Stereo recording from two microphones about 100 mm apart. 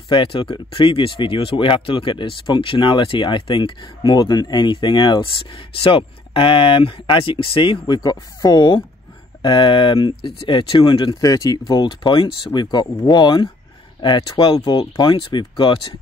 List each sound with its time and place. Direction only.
0.1 s speech: 55° left (ahead or behind)
11.1 s speech: 40° left (ahead or behind); by 12.3 s 55° left (ahead or behind)
12.5 s speech: 45° left (ahead or behind)
14.8 s speech: 60° left (ahead or behind)